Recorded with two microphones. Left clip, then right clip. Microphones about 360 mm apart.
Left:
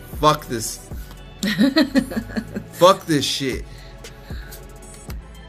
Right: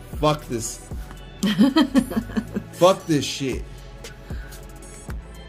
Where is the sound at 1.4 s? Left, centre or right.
Right.